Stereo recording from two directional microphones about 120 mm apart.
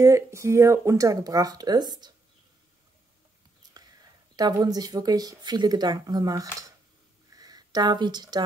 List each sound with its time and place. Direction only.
0.0 s speech: 25° right (ahead or behind)
4.4 s speech: 35° right (ahead or behind)